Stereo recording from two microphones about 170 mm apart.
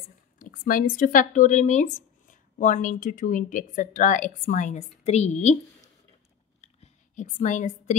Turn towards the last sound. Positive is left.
turn(degrees=45)  # may be behind; listen again after turning